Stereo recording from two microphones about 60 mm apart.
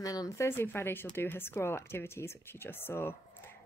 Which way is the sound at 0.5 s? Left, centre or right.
Left.